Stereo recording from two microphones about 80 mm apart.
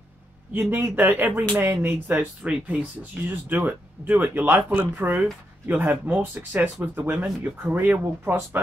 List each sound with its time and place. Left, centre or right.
0.5 s speech: right
2.1 s speech: centre
3.3 s speech: right